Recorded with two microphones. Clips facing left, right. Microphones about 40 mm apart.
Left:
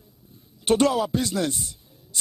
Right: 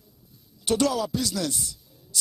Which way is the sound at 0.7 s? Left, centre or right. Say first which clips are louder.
Left 4 dB; left.